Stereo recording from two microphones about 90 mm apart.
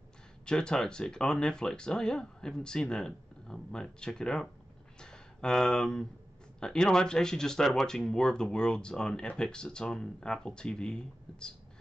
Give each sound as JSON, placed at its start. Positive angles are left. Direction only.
{"t": 0.5, "sound": "speech", "side_deg": 10}